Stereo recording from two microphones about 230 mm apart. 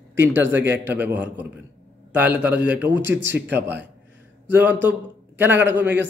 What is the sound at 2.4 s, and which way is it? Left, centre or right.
Speech, centre.